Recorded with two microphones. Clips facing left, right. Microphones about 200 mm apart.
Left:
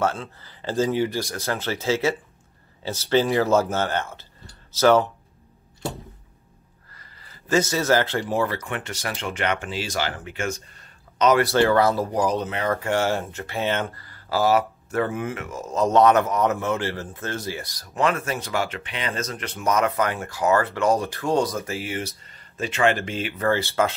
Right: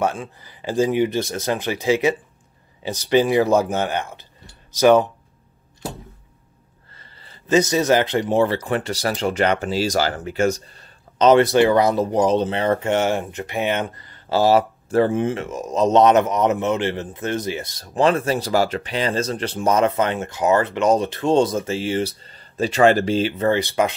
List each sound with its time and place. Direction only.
0.0 s speech: 15° right (ahead or behind)
6.9 s speech: 25° right (ahead or behind)